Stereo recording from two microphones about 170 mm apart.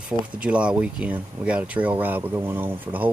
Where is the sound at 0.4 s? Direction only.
5° right (ahead or behind).